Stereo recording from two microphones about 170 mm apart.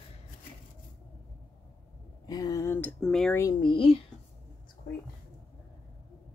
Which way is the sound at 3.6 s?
30° left (ahead or behind).